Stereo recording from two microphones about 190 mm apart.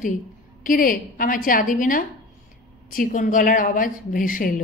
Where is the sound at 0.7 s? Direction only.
45° left (ahead or behind).